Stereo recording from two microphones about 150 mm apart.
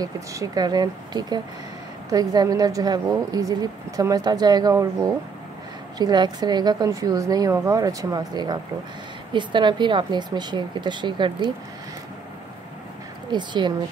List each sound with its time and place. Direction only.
0.0 s a woman's voice: 25° right (ahead or behind)
13.3 s speech: 30° right (ahead or behind)